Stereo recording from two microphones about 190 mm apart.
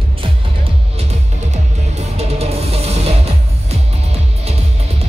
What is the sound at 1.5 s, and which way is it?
Music, 35° right (ahead or behind).